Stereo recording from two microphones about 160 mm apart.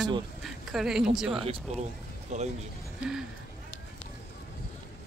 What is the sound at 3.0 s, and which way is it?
Speech, 5° right (ahead or behind).